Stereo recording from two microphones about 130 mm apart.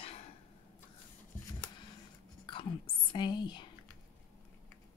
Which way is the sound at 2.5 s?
40° left (ahead or behind).